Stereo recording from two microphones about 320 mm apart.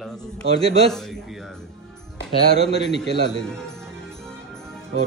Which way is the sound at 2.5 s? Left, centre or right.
Left.